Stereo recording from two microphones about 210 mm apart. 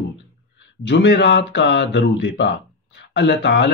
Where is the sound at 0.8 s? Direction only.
55° left (ahead or behind).